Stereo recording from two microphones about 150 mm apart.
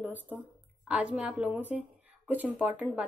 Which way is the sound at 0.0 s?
10° right (ahead or behind).